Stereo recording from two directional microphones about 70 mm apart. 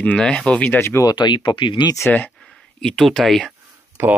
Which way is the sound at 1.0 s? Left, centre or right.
Left.